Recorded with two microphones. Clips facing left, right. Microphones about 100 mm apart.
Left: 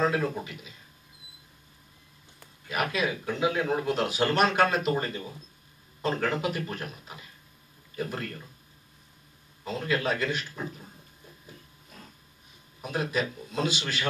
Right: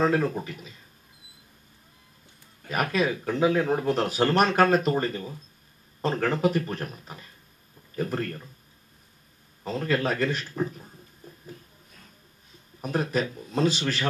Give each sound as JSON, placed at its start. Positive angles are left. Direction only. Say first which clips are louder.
{"t": 0.0, "sound": "speech", "louder": "right 3 dB", "side_deg": -40}
{"t": 2.6, "sound": "speech", "louder": "right 3 dB", "side_deg": -40}
{"t": 9.7, "sound": "speech", "louder": "right 2 dB", "side_deg": -40}
{"t": 12.8, "sound": "speech", "louder": "right 3 dB", "side_deg": -40}